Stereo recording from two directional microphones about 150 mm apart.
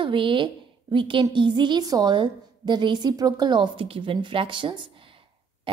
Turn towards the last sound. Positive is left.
turn(degrees=-35)  # may be behind; listen again after turning